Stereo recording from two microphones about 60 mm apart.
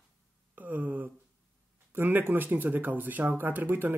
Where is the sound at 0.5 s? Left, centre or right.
Right.